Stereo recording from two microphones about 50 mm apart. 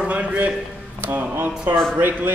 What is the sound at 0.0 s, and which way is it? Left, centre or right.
Speech, right.